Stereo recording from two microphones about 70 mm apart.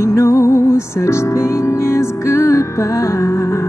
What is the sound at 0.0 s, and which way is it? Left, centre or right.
Music, left.